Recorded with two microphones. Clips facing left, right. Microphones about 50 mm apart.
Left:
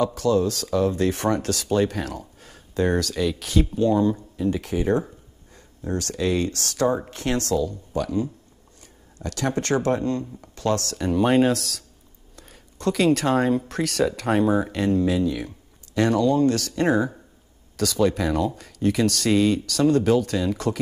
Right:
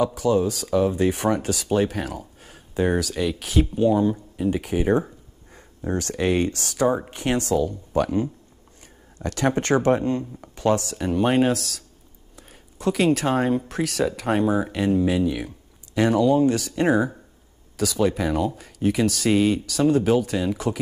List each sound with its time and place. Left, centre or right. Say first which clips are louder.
0.0 s speech: even; centre
4.4 s a sound: right 3 dB; centre
6.1 s speech: right 2 dB; right
7.5 s speech: right 2 dB; right; by 11.1 s centre
11.1 s speech: left 1 dB; centre
15.0 s speech: right 1 dB; right